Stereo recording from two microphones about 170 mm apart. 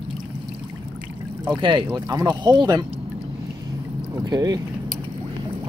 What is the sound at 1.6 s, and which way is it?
Speech, 25° right (ahead or behind).